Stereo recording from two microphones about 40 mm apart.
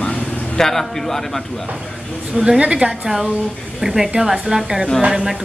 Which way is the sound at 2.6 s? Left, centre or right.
Right.